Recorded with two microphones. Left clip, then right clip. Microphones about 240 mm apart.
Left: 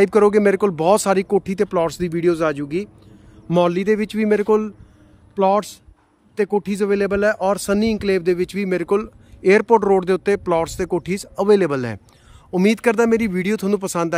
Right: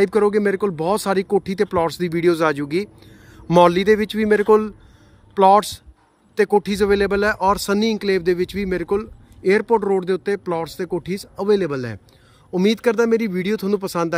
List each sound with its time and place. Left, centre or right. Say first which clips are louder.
0.0 s speech: left 3 dB; centre